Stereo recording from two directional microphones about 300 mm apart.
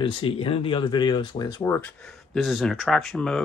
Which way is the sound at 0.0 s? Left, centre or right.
Centre.